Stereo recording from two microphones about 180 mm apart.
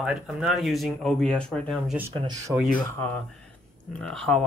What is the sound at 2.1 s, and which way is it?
Speech, 25° right (ahead or behind).